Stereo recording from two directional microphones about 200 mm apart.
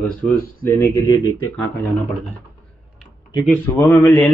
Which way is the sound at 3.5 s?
10° left (ahead or behind).